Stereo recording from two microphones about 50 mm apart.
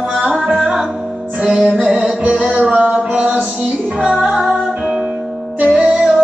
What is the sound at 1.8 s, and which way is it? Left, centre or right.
Music, centre.